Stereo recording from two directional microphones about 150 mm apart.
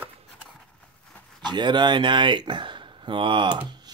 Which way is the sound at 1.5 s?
30° right (ahead or behind).